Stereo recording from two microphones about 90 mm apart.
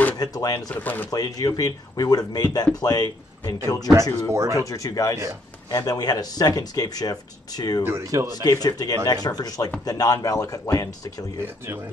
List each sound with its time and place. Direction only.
0.2 s speech: 45° left (ahead or behind)
0.7 s speech: 20° left (ahead or behind)
1.1 s speech: 45° left (ahead or behind)
4.3 s speech: 35° right (ahead or behind)
4.6 s a man's voice: 40° left (ahead or behind)
7.8 s speech: 30° right (ahead or behind)
8.4 s a man's voice: 45° left (ahead or behind)